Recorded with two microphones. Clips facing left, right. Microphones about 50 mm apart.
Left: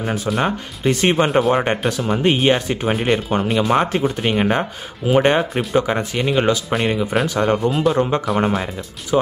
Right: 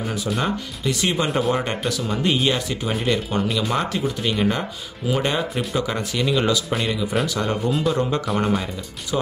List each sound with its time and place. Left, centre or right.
0.0 s speech: left